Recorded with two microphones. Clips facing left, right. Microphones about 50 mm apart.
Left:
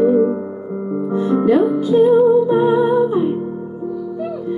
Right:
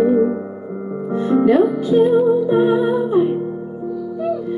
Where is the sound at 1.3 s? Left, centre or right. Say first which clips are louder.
Right 1 dB; centre.